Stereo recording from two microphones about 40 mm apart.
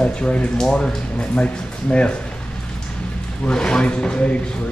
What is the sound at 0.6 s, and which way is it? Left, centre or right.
Speech, centre.